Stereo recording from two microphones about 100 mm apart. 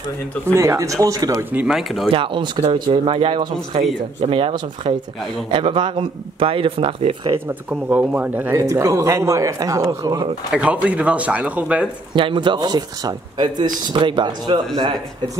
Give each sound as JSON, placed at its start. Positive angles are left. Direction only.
{"t": 0.6, "sound": "speech", "side_deg": -30}
{"t": 1.7, "sound": "speech", "side_deg": 0}
{"t": 2.0, "sound": "speech", "side_deg": -60}
{"t": 7.9, "sound": "speech", "side_deg": -15}
{"t": 8.5, "sound": "speech", "side_deg": -30}
{"t": 10.5, "sound": "speech", "side_deg": -10}
{"t": 12.1, "sound": "speech", "side_deg": -55}
{"t": 14.8, "sound": "speech", "side_deg": -40}